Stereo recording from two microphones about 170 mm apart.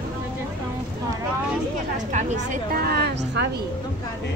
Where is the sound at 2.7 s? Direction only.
65° right (ahead or behind).